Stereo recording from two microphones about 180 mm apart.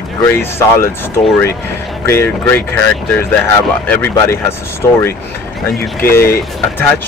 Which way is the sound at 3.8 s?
10° left (ahead or behind).